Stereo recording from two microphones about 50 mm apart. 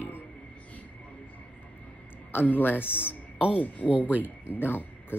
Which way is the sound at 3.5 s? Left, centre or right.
Left.